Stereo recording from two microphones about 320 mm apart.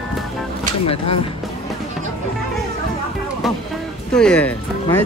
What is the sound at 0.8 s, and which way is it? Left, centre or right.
Speech, left.